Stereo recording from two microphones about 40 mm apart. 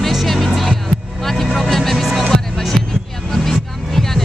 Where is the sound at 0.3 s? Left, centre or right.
Centre.